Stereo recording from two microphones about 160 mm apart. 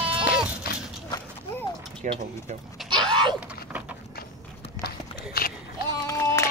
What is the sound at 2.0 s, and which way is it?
Speech, 50° right (ahead or behind).